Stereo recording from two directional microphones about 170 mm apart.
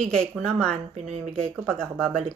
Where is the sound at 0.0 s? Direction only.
5° left (ahead or behind).